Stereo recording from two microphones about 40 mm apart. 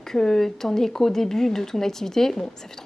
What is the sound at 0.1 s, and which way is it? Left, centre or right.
Speech, centre.